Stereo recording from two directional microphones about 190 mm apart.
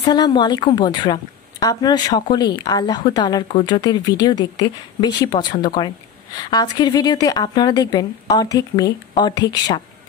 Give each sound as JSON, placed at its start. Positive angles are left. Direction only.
{"t": 0.0, "sound": "a woman's voice", "side_deg": 20}